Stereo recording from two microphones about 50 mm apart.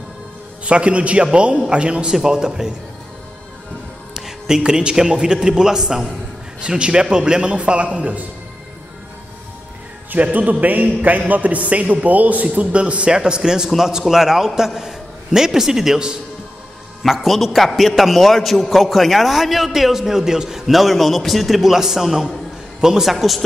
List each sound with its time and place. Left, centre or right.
0.7 s a man's voice: right
4.1 s a man's voice: centre
10.1 s a man's voice: right; by 16.2 s centre
17.0 s a man's voice: centre
23.1 s a man's voice: centre